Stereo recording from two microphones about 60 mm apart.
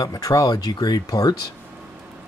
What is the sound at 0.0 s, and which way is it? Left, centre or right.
Speech, left.